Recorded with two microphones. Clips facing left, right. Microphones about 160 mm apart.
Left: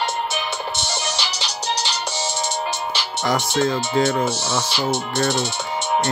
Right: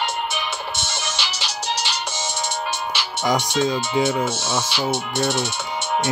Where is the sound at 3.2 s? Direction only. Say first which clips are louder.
Even; 15° right (ahead or behind).